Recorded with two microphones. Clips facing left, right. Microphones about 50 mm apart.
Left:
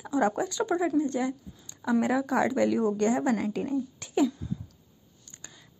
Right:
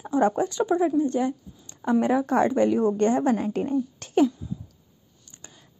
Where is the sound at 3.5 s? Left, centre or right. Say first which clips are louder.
Right 4 dB; right.